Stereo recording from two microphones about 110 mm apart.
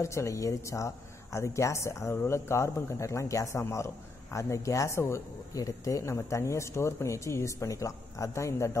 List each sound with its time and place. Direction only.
0.0 s a man's voice: 25° left (ahead or behind)